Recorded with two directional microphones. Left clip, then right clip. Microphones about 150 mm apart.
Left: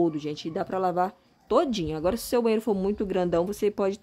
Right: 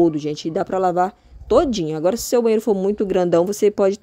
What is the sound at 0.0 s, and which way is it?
Speech, 25° right (ahead or behind).